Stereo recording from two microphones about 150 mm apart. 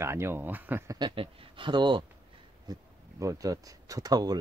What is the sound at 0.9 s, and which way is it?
A man's voice, 35° right (ahead or behind).